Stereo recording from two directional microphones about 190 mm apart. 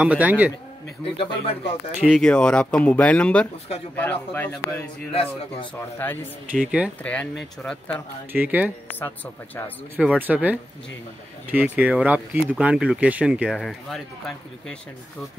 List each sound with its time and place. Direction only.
0.0 s speech: 10° right (ahead or behind)
1.1 s speech: 30° left (ahead or behind)
2.0 s a man's voice: 5° left (ahead or behind)
5.1 s speech: 30° left (ahead or behind)
5.8 s a man's voice: 10° left (ahead or behind)
6.6 s speech: 5° right (ahead or behind)
7.0 s speech: 5° left (ahead or behind)
8.3 s speech: 10° right (ahead or behind)
9.0 s a man's voice: 10° left (ahead or behind)
9.9 s speech: 10° right (ahead or behind)